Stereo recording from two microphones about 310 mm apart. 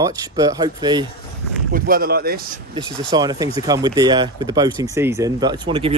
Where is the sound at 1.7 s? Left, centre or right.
Right.